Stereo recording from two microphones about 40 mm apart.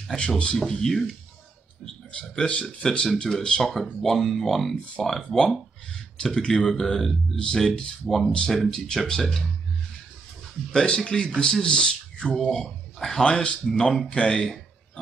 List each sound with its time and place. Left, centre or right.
0.7 s speech: centre
1.9 s speech: centre
3.6 s speech: centre
7.3 s speech: centre
8.8 s speech: centre
10.7 s speech: left
12.4 s speech: centre
13.2 s speech: left